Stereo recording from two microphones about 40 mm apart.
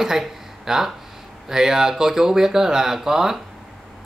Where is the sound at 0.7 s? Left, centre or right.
Centre.